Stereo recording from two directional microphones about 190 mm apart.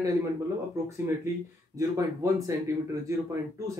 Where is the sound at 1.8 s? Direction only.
15° right (ahead or behind).